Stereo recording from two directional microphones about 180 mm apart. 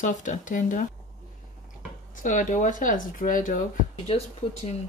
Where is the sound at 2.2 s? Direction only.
45° left (ahead or behind).